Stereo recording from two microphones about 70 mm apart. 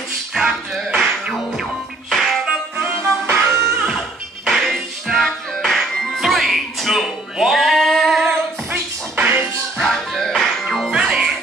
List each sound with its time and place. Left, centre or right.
0.3 s music: centre
2.8 s music: right
3.7 s music: centre
9.8 s music: centre
10.9 s music: centre